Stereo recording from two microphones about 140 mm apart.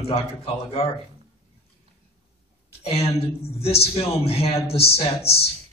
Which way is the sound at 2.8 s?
45° left (ahead or behind).